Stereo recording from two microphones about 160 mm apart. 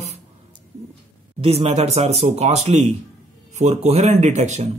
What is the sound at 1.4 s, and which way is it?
Speech, 40° right (ahead or behind).